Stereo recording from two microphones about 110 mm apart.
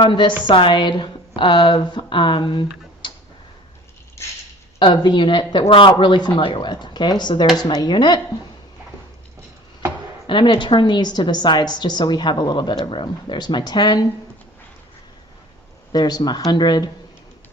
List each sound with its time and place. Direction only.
0.0 s a woman's voice: 45° left (ahead or behind)
4.7 s a woman's voice: 45° left (ahead or behind)
5.6 s speech: 55° left (ahead or behind)
5.9 s a woman's voice: 45° left (ahead or behind)
10.2 s a woman's voice: 45° left (ahead or behind)
15.9 s speech: 40° left (ahead or behind)